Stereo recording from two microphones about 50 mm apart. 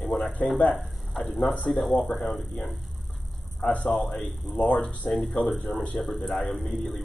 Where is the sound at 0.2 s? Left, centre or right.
Left.